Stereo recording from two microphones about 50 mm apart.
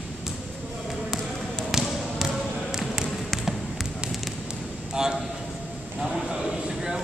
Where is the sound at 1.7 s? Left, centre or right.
Centre.